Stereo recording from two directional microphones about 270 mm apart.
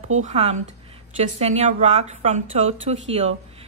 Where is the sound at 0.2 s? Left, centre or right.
Right.